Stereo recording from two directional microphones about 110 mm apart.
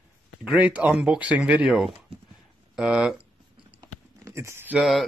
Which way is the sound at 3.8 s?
30° right (ahead or behind).